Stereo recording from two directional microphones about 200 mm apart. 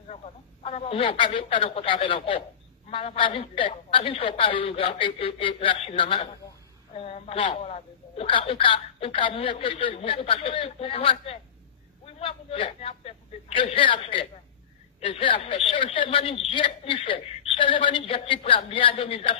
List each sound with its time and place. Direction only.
0.1 s a woman's voice: 30° left (ahead or behind)